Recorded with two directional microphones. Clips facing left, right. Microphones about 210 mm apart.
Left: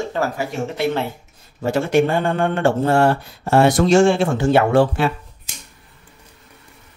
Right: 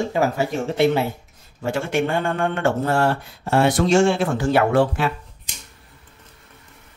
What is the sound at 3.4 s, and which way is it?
Speech, 45° left (ahead or behind).